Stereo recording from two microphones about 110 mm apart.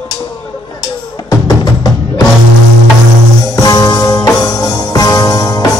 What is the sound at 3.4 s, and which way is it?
Music, 35° left (ahead or behind).